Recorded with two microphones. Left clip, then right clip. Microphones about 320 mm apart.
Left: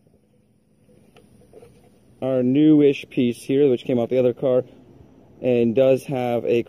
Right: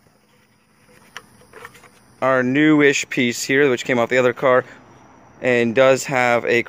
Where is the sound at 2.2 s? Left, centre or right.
Right.